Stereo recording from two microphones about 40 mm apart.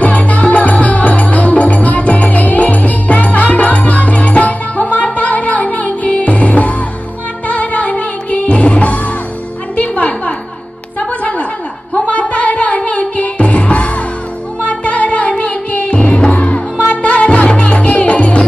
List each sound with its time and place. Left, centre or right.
0.0 s music: left
11.1 s a sound: left
11.9 s music: left
16.3 s music: left